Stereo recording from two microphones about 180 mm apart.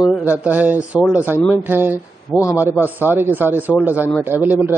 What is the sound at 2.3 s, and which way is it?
Speech, 15° left (ahead or behind).